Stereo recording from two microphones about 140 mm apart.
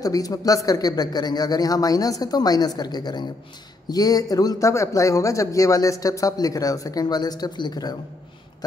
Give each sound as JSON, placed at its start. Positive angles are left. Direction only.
{"t": 0.0, "sound": "a man's voice", "side_deg": 25}